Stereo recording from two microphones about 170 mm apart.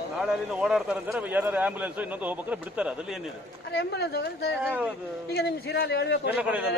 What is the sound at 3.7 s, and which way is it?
A man's voice, 75° left (ahead or behind).